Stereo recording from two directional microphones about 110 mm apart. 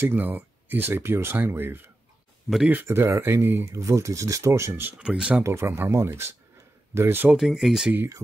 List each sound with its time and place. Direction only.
0.0 s speech: 20° right (ahead or behind)
4.9 s speech: 10° right (ahead or behind)
5.4 s speech: 25° right (ahead or behind)
7.2 s speech: 5° right (ahead or behind)